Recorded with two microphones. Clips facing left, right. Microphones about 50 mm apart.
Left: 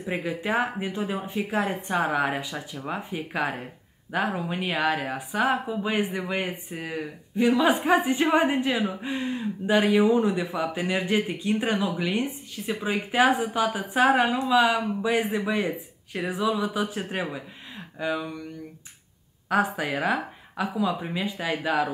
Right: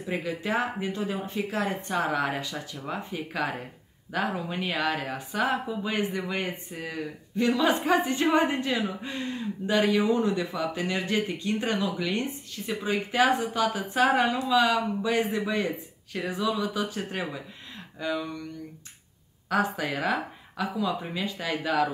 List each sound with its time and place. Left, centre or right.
0.0 s speech: centre
19.5 s speech: centre